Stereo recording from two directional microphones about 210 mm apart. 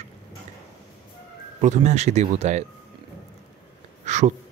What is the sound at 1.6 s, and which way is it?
Speech, 35° right (ahead or behind).